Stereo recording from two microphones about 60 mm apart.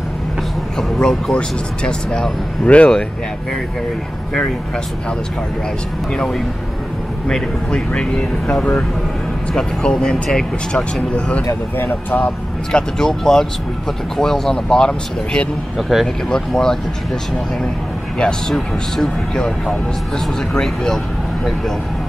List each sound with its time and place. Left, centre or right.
0.7 s a sound: centre
1.0 s speech: centre
6.1 s speech: centre
11.8 s speech: left
12.7 s speech: centre
15.9 s speech: centre
16.3 s speech: centre
18.5 s speech: centre